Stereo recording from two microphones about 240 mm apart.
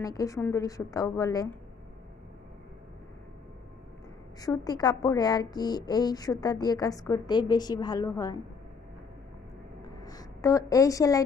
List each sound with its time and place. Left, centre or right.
0.0 s speech: centre
4.4 s speech: centre
10.0 s a woman's voice: centre